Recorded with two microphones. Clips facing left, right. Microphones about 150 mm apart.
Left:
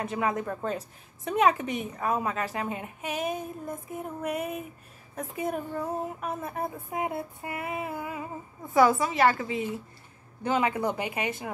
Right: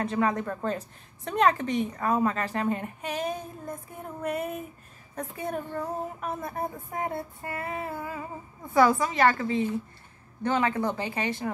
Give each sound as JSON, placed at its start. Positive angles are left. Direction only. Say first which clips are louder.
{"t": 0.0, "sound": "a woman's voice", "louder": "right 2 dB", "side_deg": 10}